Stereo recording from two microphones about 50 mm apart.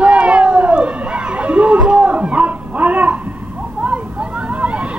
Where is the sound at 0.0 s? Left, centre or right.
Right.